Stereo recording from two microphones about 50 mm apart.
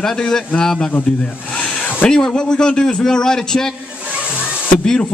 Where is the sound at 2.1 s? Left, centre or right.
Centre.